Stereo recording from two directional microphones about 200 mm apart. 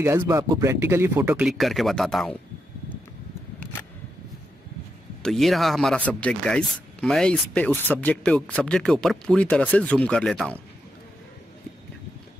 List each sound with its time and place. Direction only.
0.0 s speech: 15° right (ahead or behind); by 2.3 s 5° left (ahead or behind)
5.2 s speech: centre (ahead or behind)